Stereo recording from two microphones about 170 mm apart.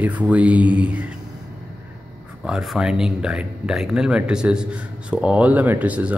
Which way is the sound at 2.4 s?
5° right (ahead or behind).